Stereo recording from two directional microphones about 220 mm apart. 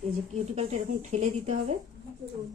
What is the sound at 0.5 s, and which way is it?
Speech, 30° right (ahead or behind).